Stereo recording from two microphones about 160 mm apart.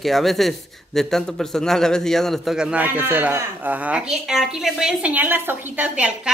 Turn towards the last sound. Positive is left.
turn(degrees=-10)  # may be behind; listen again after turning